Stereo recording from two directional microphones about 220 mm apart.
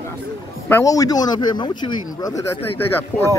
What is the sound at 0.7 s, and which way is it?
Speech, 15° left (ahead or behind).